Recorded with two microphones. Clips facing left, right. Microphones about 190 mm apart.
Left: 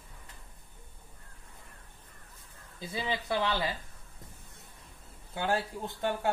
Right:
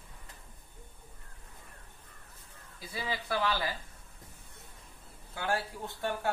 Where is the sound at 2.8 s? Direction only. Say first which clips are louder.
Left 3 dB; 25° left (ahead or behind).